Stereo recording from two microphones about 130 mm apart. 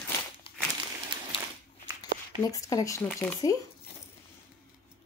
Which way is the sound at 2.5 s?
25° left (ahead or behind).